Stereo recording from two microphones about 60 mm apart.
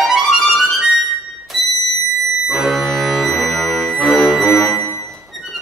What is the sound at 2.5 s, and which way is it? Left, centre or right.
Music, centre.